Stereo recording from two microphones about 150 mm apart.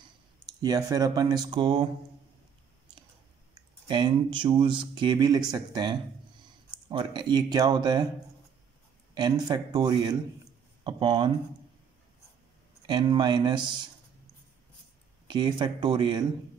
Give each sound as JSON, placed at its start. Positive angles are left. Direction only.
{"t": 0.6, "sound": "speech", "side_deg": -25}
{"t": 3.8, "sound": "speech", "side_deg": -30}
{"t": 9.1, "sound": "speech", "side_deg": -30}
{"t": 12.8, "sound": "speech", "side_deg": -30}
{"t": 15.2, "sound": "speech", "side_deg": -30}